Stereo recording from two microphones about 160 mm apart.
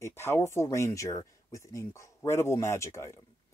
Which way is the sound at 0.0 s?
15° left (ahead or behind).